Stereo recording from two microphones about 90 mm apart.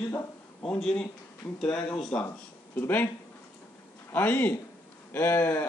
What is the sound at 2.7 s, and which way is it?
Speech, 20° left (ahead or behind).